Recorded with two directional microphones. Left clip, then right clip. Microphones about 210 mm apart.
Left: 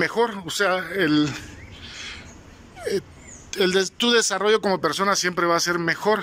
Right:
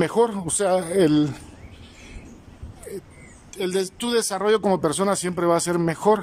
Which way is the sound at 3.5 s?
5° right (ahead or behind).